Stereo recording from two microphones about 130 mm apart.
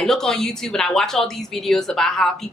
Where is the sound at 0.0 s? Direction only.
5° left (ahead or behind).